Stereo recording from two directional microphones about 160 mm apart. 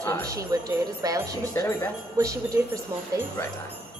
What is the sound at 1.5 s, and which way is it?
Speech, 20° left (ahead or behind).